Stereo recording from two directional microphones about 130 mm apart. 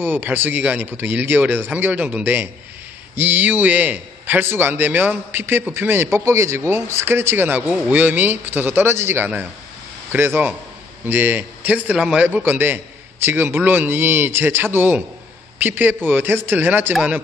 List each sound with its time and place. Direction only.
0.0 s a man's voice: 15° right (ahead or behind)